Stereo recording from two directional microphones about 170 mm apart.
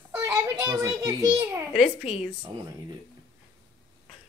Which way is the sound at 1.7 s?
35° left (ahead or behind).